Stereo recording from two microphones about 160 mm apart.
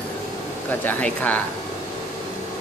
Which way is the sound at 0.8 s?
10° left (ahead or behind).